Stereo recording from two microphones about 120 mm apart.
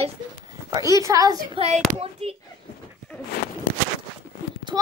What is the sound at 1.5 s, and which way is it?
Speech, 60° right (ahead or behind).